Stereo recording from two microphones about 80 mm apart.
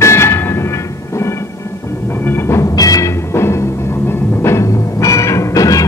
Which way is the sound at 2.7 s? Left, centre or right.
Left.